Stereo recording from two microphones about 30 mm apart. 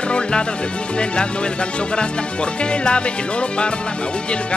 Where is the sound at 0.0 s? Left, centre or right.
Left.